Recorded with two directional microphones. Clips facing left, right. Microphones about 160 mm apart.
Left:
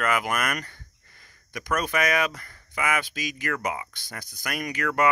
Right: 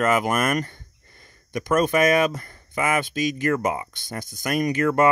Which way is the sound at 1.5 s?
25° right (ahead or behind).